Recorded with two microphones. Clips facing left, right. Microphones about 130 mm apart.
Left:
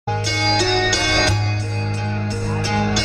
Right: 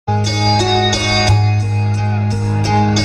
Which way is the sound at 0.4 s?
60° right (ahead or behind).